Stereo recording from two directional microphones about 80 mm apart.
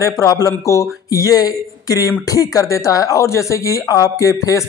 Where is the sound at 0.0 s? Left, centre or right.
Left.